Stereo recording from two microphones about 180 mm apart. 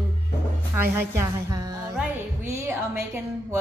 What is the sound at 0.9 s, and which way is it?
A woman's voice, 15° right (ahead or behind).